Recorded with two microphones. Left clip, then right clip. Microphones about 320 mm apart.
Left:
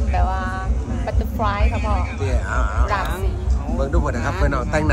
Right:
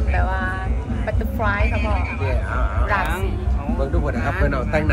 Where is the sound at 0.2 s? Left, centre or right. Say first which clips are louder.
Right 1 dB; centre.